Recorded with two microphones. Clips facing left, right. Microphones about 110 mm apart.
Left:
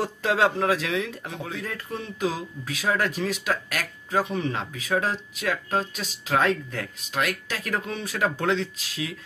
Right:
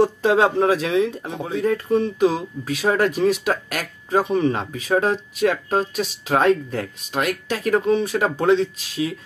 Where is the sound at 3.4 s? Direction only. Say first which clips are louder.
Right 5 dB; 45° right (ahead or behind).